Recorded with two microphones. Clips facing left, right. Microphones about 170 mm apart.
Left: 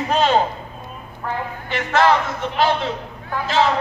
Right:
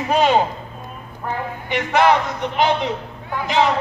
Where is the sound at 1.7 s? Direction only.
15° right (ahead or behind).